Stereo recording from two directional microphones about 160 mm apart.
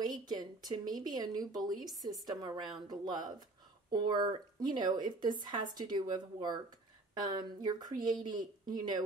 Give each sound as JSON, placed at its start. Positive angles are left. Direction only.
{"t": 0.0, "sound": "speech", "side_deg": -25}